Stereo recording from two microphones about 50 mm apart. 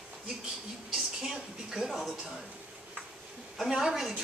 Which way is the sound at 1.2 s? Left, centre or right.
Centre.